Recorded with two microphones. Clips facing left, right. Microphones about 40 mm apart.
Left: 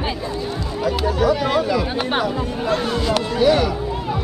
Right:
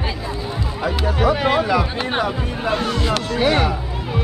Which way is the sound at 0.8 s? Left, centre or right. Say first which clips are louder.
Left 1 dB; right.